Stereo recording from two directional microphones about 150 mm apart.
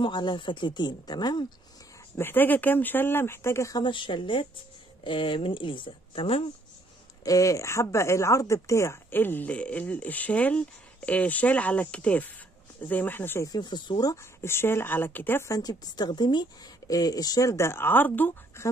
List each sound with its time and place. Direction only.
0.0 s speech: 30° left (ahead or behind)
2.1 s speech: 15° left (ahead or behind); by 6.4 s 40° left (ahead or behind)
7.2 s speech: 20° left (ahead or behind)
13.5 s speech: 30° left (ahead or behind); by 18.7 s 15° left (ahead or behind)